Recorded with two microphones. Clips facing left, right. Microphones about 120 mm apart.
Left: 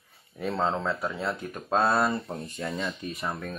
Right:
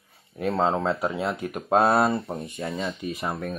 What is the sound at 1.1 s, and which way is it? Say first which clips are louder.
Speech: right 4 dB; 15° right (ahead or behind).